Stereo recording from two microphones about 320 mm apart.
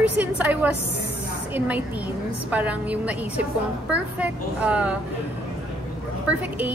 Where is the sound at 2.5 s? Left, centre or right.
Centre.